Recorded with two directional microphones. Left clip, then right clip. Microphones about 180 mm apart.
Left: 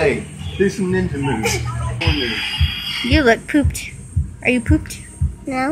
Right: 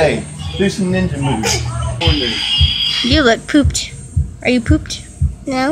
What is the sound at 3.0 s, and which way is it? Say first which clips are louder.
A child's voice: even; 5° right (ahead or behind).